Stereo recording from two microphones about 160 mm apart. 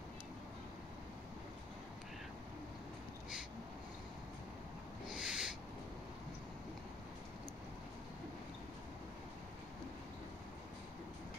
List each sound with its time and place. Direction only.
5.2 s owl: 5° right (ahead or behind)